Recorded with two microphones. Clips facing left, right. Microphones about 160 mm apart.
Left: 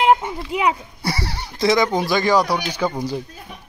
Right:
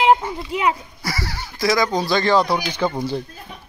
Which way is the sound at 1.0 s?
30° left (ahead or behind).